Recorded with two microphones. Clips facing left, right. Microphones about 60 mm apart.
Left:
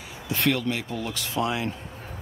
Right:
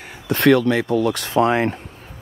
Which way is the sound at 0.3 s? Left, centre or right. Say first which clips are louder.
Right 10 dB; right.